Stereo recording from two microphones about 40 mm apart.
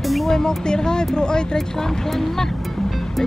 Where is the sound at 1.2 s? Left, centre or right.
Centre.